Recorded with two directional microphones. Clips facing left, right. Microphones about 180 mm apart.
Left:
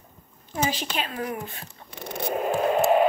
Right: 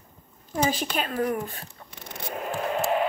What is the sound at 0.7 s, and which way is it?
Speech, 45° right (ahead or behind).